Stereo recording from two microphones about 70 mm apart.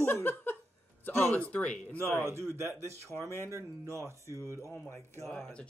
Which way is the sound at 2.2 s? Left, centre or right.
Right.